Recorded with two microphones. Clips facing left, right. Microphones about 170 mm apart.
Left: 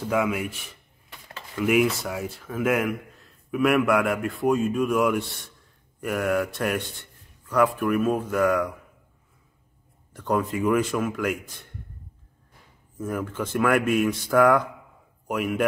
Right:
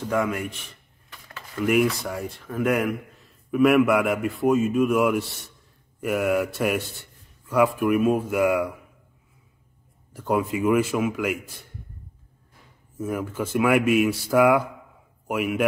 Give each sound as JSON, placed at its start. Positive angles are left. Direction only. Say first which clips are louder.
{"t": 0.0, "sound": "a man's voice", "louder": "even", "side_deg": 5}
{"t": 10.1, "sound": "speech", "louder": "right 1 dB", "side_deg": -10}
{"t": 12.9, "sound": "speech", "louder": "right 1 dB", "side_deg": -10}